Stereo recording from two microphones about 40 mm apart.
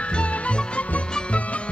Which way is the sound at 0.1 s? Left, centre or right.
Left.